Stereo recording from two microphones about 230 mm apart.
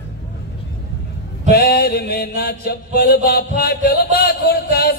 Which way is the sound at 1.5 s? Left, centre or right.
Left.